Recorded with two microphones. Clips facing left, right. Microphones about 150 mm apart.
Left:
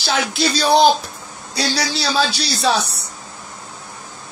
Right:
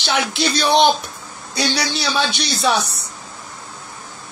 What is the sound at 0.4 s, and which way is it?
A man's voice, 30° left (ahead or behind).